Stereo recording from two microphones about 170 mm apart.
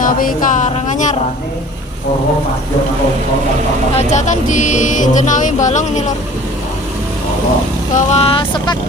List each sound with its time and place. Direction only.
0.0 s music: 55° left (ahead or behind)
4.1 s music: 45° left (ahead or behind)
7.9 s speech: 40° left (ahead or behind)